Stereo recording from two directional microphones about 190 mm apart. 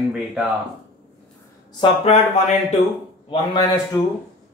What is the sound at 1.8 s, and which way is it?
Speech, 30° left (ahead or behind).